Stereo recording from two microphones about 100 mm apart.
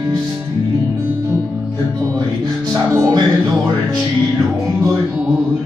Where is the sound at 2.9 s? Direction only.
40° right (ahead or behind).